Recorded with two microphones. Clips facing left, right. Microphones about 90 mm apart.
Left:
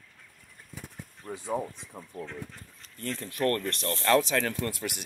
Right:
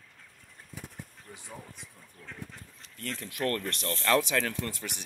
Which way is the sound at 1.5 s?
90° left.